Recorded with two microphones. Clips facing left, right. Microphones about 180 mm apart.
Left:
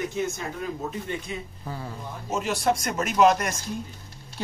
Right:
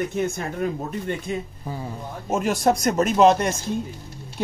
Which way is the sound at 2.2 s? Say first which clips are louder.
Right 4 dB; 50° right (ahead or behind).